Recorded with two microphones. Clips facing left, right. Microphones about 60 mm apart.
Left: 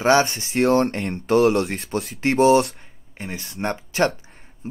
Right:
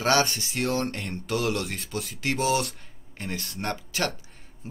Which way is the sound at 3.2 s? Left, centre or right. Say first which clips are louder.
Left 4 dB; centre.